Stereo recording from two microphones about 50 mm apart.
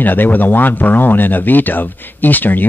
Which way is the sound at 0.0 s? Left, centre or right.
Left.